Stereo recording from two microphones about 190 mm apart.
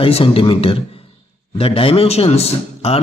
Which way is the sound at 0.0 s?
30° left (ahead or behind).